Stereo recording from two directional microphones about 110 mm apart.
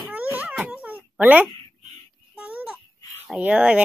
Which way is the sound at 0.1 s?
15° right (ahead or behind).